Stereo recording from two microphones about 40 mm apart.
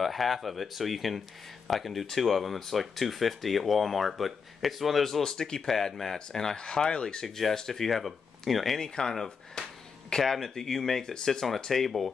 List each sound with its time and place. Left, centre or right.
0.0 s speech: centre
5.3 s speech: centre
7.2 s speech: centre
8.7 s speech: centre